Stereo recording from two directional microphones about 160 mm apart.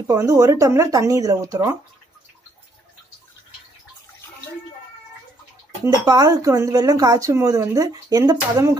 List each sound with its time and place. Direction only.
0.0 s speech: 20° right (ahead or behind)
6.0 s speech: 25° right (ahead or behind)